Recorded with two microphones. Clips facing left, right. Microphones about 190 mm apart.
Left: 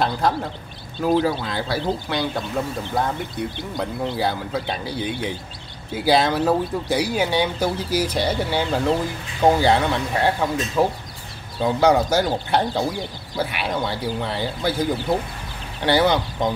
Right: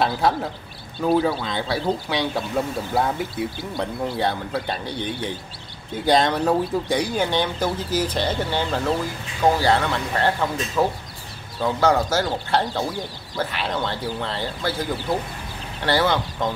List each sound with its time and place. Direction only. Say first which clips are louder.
0.0 s speech: even; centre (ahead or behind); by 16.4 s 15° left (ahead or behind)